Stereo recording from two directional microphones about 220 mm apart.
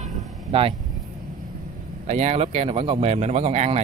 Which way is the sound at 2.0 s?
30° right (ahead or behind).